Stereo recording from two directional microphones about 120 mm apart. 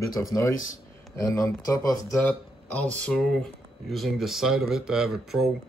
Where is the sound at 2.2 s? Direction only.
15° left (ahead or behind).